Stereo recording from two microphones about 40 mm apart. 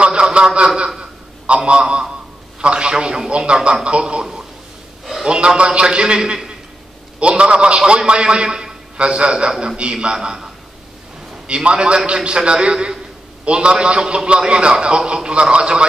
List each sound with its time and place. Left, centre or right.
0.0 s a sound: right
0.7 s a man's voice: centre
5.2 s a man's voice: centre
11.4 s a man's voice: right